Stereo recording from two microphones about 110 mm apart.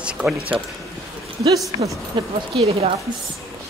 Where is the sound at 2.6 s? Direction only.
60° right (ahead or behind).